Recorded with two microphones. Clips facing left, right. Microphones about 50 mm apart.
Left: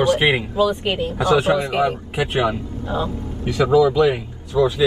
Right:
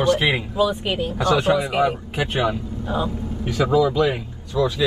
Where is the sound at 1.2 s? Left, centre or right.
Centre.